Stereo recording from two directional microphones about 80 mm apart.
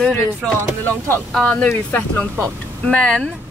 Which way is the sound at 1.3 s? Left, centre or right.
Centre.